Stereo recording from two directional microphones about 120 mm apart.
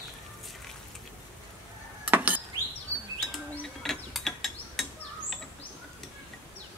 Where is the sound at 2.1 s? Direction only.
15° right (ahead or behind).